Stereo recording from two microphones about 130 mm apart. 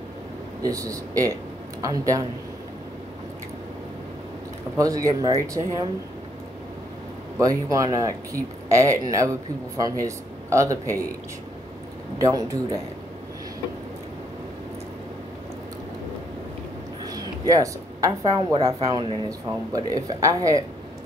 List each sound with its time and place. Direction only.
0.6 s speech: 25° right (ahead or behind)
4.7 s speech: 25° right (ahead or behind)
7.3 s speech: 25° right (ahead or behind)
12.2 s speech: 25° right (ahead or behind)
17.0 s speech: 30° right (ahead or behind)
18.9 s speech: 40° right (ahead or behind)
19.2 s speech: 30° right (ahead or behind)